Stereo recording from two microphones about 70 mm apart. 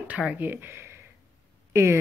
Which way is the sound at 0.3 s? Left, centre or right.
Right.